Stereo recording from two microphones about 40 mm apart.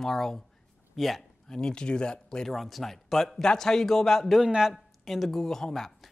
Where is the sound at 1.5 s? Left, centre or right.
Centre.